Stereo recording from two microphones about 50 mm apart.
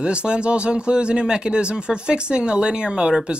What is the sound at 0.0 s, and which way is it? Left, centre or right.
Speech, centre.